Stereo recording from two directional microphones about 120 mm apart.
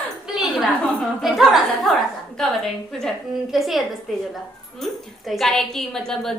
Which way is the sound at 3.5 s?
Centre (ahead or behind).